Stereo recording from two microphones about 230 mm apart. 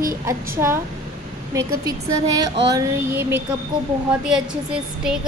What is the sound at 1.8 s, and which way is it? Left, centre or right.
A woman's voice, centre.